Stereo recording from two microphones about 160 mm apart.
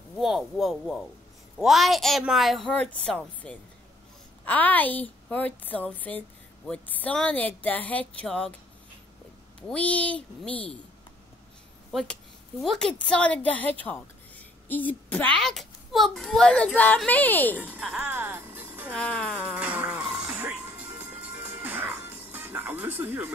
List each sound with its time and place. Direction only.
0.2 s a child's voice: centre (ahead or behind)
9.6 s a woman's voice: 10° left (ahead or behind)
11.9 s a woman's voice: centre (ahead or behind)
17.6 s speech: 5° right (ahead or behind)
18.9 s a woman's voice: 10° left (ahead or behind)
19.4 s music: 10° right (ahead or behind)